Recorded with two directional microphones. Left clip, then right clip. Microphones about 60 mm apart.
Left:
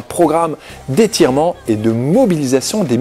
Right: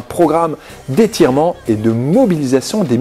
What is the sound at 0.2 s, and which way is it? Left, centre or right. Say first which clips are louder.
Speech: even; left.